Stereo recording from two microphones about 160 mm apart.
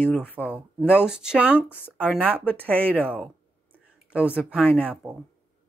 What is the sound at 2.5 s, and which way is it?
Speech, 10° left (ahead or behind).